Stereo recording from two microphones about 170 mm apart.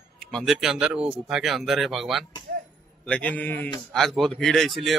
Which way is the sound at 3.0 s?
10° left (ahead or behind).